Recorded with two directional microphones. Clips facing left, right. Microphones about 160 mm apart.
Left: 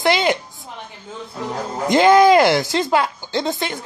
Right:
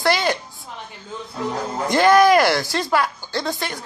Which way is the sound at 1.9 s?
20° left (ahead or behind).